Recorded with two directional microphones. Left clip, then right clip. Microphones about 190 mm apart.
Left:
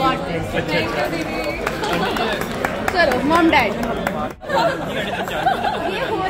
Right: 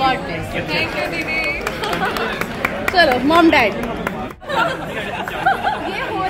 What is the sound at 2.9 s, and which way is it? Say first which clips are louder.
Speech: right 3 dB; 50° right (ahead or behind).